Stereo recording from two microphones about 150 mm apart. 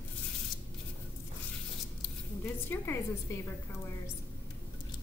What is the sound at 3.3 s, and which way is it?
Speech, 20° left (ahead or behind).